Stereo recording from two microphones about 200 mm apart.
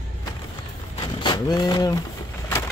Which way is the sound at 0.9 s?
25° left (ahead or behind).